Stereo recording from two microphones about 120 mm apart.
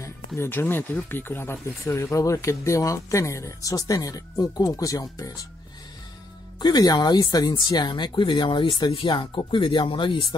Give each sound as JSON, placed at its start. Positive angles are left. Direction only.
{"t": 0.4, "sound": "speech", "side_deg": 20}
{"t": 6.6, "sound": "speech", "side_deg": 35}